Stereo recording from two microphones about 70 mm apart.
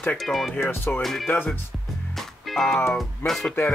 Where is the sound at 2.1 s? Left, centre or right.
Centre.